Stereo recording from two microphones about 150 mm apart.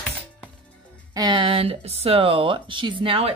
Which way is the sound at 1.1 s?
30° right (ahead or behind).